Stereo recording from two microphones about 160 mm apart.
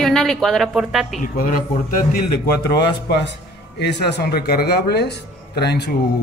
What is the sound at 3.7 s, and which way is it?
Speech, 90° left.